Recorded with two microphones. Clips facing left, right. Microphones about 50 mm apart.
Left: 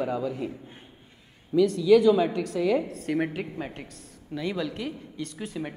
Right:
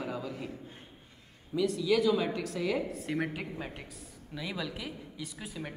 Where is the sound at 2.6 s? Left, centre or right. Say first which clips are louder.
Left 8 dB; centre.